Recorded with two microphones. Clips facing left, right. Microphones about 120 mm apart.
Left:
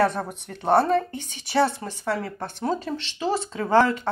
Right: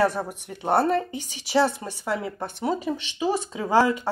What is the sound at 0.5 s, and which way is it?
Speech, 10° right (ahead or behind).